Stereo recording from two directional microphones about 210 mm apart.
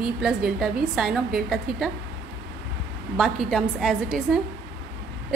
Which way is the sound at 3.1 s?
Centre (ahead or behind).